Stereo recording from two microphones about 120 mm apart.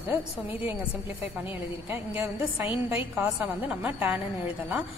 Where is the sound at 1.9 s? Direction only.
15° right (ahead or behind).